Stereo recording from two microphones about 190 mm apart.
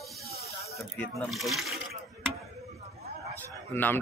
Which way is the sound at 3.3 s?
10° left (ahead or behind).